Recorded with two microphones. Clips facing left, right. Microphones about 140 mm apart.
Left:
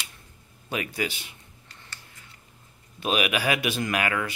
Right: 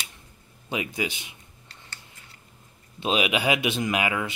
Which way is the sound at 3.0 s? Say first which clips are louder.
Right 1 dB; 20° right (ahead or behind).